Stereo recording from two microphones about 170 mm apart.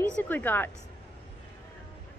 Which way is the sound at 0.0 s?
10° left (ahead or behind).